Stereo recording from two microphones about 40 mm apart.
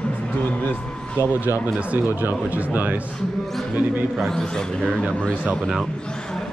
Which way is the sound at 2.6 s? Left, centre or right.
Right.